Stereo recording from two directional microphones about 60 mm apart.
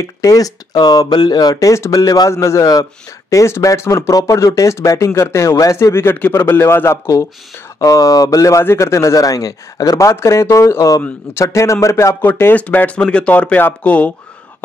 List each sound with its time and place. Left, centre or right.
0.0 s speech: left
2.3 s speech: left
2.7 s a man's voice: left
4.1 s a man's voice: left
7.8 s a man's voice: left
10.1 s a man's voice: left
12.2 s a man's voice: left
12.5 s speech: left